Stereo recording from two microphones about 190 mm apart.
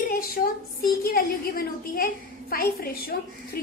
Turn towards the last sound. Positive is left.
turn(degrees=50)  # may be behind; listen again after turning